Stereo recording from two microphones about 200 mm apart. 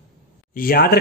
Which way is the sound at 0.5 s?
50° left (ahead or behind).